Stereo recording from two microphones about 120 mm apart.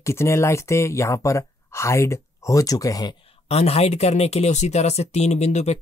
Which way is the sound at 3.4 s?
60° left (ahead or behind).